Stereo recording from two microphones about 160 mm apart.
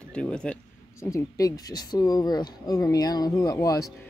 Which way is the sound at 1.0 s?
20° left (ahead or behind).